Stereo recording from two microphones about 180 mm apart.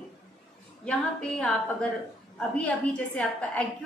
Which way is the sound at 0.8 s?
5° left (ahead or behind).